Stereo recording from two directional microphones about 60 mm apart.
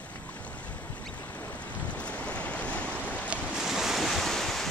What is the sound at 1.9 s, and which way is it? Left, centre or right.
Waves, left.